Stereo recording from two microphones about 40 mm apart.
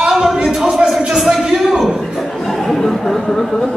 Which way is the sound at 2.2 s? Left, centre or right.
Centre.